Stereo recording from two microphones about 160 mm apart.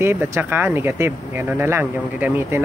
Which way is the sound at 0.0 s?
15° right (ahead or behind).